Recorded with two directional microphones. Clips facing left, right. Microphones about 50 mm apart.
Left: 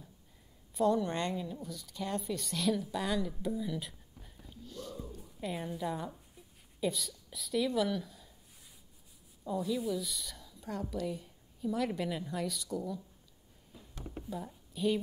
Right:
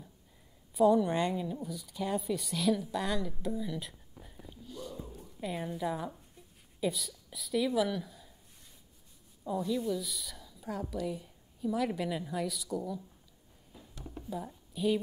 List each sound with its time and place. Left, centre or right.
0.7 s a woman's voice: centre
4.2 s a sound: centre
5.1 s speech: centre
9.4 s a woman's voice: centre
13.9 s a sound: left
14.3 s a woman's voice: centre